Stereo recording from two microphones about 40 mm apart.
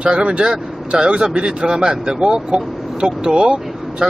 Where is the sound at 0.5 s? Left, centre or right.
Centre.